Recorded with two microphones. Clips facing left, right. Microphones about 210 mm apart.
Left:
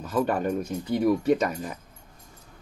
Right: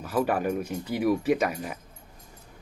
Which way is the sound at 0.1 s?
5° right (ahead or behind).